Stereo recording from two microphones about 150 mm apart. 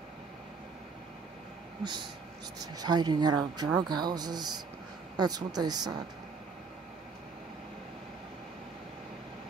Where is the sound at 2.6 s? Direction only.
25° right (ahead or behind).